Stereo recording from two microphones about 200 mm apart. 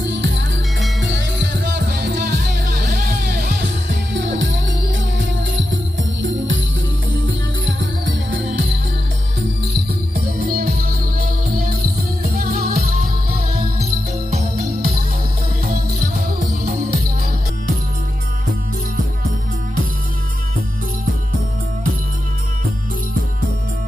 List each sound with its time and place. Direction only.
0.0 s music: 70° right (ahead or behind)
7.8 s music: 65° right (ahead or behind)
9.8 s music: 50° right (ahead or behind)